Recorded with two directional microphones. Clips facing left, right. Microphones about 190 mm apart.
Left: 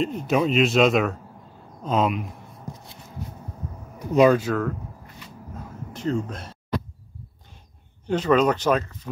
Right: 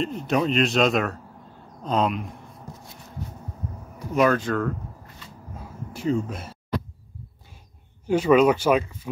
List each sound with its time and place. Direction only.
0.0 s speech: centre (ahead or behind)
4.1 s speech: 20° left (ahead or behind)
4.4 s speech: 5° left (ahead or behind)
5.5 s a sound: 10° right (ahead or behind)
8.1 s speech: 10° right (ahead or behind)